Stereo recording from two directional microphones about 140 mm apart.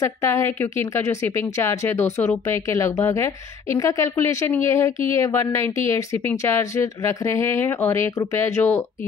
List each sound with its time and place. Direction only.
0.0 s a woman's voice: 20° left (ahead or behind)